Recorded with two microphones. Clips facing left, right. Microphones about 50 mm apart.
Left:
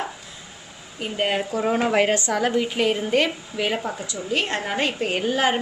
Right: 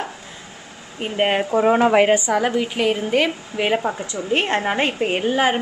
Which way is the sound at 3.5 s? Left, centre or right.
Right.